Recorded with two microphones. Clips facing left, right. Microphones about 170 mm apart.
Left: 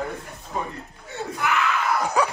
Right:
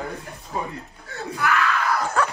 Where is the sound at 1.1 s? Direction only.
20° left (ahead or behind).